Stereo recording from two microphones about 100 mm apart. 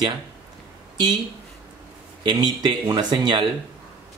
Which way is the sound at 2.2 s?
45° right (ahead or behind).